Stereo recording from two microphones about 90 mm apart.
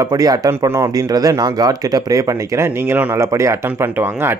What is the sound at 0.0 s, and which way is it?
Speech, 45° right (ahead or behind).